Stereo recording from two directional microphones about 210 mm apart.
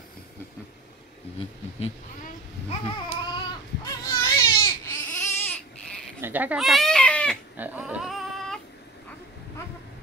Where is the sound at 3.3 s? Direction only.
20° left (ahead or behind).